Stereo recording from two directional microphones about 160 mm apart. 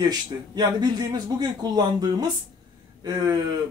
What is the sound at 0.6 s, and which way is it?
A man's voice, 25° right (ahead or behind).